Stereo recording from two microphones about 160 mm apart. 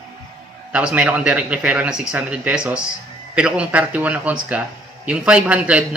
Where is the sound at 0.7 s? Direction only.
10° right (ahead or behind).